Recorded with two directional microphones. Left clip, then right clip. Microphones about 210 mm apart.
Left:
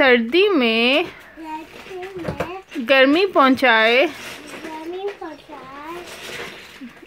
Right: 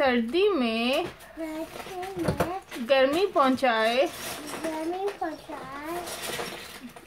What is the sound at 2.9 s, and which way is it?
Speech, 30° left (ahead or behind).